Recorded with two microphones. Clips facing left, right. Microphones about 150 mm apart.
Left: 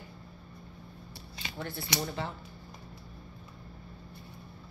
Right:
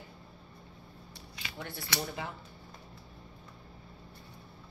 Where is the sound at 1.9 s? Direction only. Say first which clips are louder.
Left 2 dB; 15° left (ahead or behind).